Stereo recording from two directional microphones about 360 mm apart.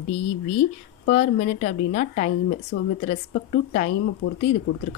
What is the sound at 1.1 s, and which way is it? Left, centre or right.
Speech, left.